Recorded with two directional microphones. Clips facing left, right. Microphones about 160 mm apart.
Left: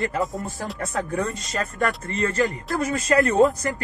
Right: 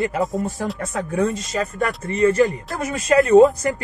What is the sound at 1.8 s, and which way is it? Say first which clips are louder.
Speech: right 7 dB; 15° right (ahead or behind).